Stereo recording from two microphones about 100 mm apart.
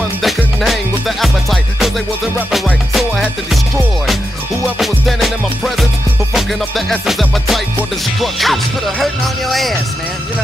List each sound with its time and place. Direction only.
0.6 s music: centre (ahead or behind)